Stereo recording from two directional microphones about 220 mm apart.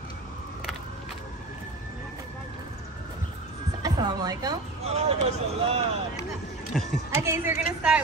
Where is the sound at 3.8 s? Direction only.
20° right (ahead or behind).